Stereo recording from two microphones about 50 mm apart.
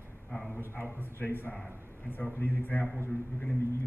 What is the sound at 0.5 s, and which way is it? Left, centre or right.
A man's voice, left.